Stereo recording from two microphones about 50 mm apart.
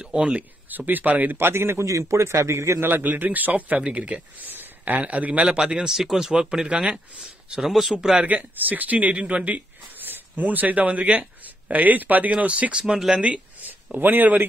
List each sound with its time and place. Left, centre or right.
0.0 s speech: right
0.7 s speech: right
1.5 s a man's voice: right
1.9 s a man's voice: right
2.8 s speech: right
4.5 s a man's voice: right
5.6 s speech: centre
8.3 s speech: right
12.8 s speech: centre
13.2 s a sound: right
13.9 s speech: right